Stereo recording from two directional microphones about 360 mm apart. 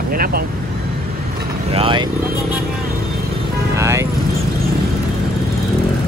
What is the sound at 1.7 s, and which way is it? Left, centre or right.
Speech, centre.